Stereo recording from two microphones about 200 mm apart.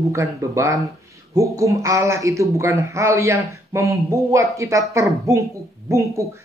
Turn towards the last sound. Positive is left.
turn(degrees=-15)  # may be behind; listen again after turning